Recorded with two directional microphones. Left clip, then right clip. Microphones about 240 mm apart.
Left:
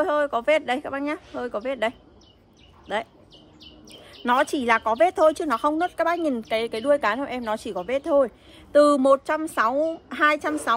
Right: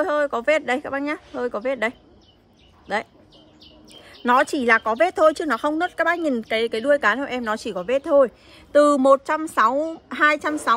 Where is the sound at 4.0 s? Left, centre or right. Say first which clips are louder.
Right 3 dB; right.